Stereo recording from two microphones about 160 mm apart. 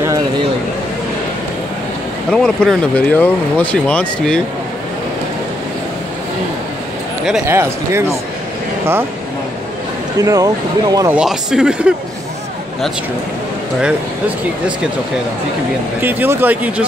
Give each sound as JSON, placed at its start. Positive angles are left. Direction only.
{"t": 2.3, "sound": "speech", "side_deg": 5}
{"t": 7.4, "sound": "speech", "side_deg": -15}
{"t": 10.2, "sound": "speech", "side_deg": -20}
{"t": 11.1, "sound": "speech", "side_deg": -5}
{"t": 16.0, "sound": "speech", "side_deg": -10}